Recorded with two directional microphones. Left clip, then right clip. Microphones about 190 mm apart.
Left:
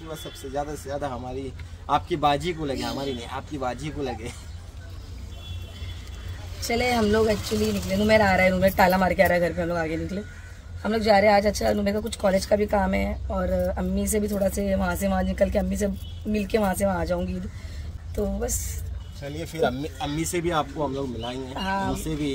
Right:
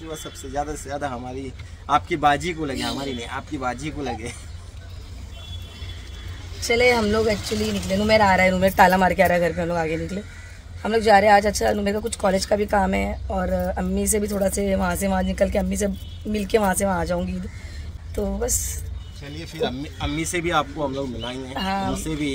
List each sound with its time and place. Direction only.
0.1 s a man's voice: centre (ahead or behind)
6.7 s a woman's voice: 15° right (ahead or behind)
19.3 s speech: 60° left (ahead or behind)
20.2 s speech: 20° left (ahead or behind)
20.4 s a man's voice: 5° left (ahead or behind)
21.5 s speech: 40° right (ahead or behind)
21.9 s a man's voice: centre (ahead or behind)